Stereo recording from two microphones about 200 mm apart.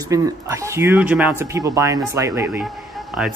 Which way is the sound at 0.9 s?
5° right (ahead or behind).